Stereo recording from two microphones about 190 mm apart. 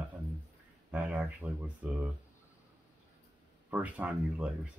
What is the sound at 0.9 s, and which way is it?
Speech, 10° right (ahead or behind).